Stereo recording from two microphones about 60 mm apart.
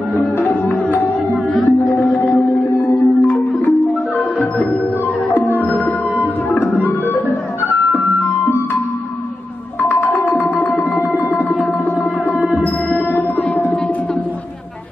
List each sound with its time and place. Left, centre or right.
1.5 s music: centre
3.2 s music: left
5.6 s music: left
9.8 s music: left
12.4 s music: centre